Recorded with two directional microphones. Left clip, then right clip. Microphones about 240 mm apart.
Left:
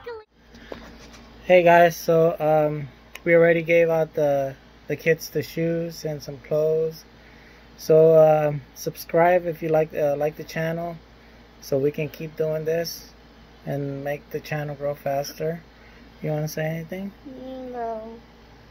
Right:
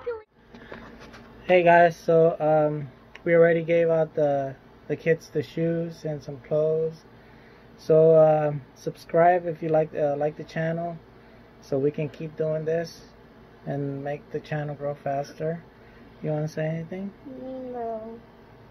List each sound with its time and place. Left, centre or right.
1.5 s speech: left
16.3 s speech: left